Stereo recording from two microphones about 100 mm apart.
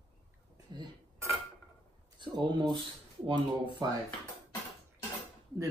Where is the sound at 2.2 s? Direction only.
50° right (ahead or behind).